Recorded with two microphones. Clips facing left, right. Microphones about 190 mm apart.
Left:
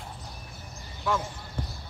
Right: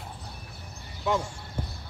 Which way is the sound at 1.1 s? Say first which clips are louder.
Right 2 dB; 20° right (ahead or behind).